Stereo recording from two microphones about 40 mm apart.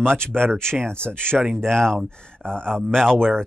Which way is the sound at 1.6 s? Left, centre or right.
Centre.